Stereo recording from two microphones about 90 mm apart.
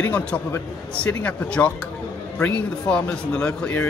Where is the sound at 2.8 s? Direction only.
10° left (ahead or behind).